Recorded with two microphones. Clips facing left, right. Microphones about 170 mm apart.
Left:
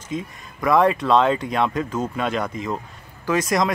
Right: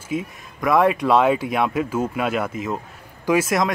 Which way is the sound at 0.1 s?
10° right (ahead or behind).